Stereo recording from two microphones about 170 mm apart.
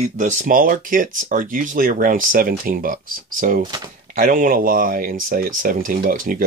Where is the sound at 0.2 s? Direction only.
50° right (ahead or behind).